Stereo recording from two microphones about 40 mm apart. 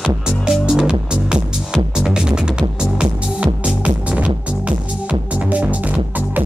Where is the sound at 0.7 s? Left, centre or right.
Right.